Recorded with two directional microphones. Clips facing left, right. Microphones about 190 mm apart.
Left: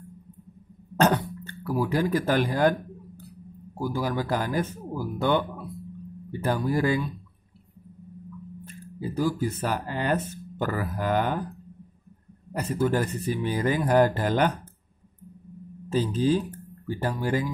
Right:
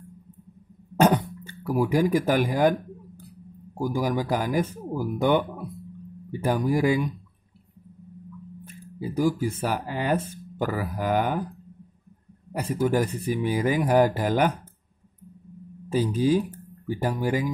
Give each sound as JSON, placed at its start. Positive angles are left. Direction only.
{"t": 0.9, "sound": "cough", "side_deg": -10}
{"t": 1.4, "sound": "speech", "side_deg": -10}
{"t": 3.7, "sound": "speech", "side_deg": -15}
{"t": 8.6, "sound": "speech", "side_deg": -10}
{"t": 12.5, "sound": "speech", "side_deg": -10}
{"t": 15.9, "sound": "speech", "side_deg": -10}